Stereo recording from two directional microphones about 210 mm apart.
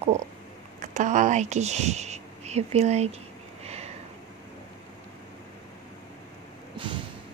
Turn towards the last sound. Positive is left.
turn(degrees=-25)  # may be behind; listen again after turning